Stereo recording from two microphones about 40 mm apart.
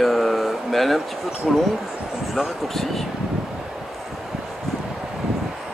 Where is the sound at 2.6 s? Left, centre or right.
Centre.